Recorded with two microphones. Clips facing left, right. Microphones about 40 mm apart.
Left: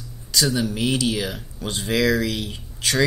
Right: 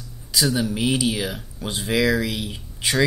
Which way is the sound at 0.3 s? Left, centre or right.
Centre.